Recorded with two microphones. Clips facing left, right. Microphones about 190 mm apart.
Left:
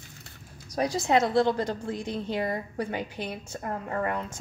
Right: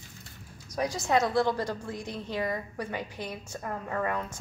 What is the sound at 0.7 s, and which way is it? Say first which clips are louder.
A woman's voice: left 3 dB; 30° left (ahead or behind).